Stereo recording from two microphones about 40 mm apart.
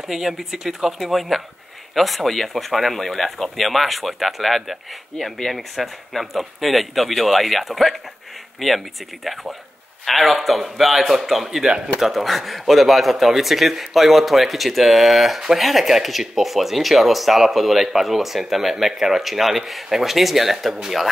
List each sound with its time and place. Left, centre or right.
0.1 s speech: centre
11.6 s speech: centre
12.1 s speech: centre